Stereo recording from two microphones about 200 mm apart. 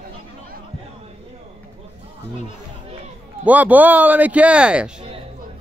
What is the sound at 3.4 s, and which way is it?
Speech, 5° right (ahead or behind).